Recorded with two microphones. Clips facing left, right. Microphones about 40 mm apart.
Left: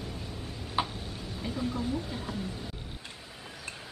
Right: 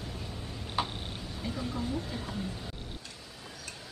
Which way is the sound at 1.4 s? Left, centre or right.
Centre.